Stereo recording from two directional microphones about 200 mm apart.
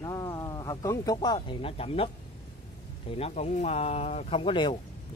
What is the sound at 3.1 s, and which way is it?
Speech, 30° left (ahead or behind).